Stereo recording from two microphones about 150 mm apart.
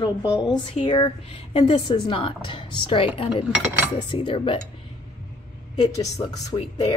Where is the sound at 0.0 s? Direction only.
25° left (ahead or behind).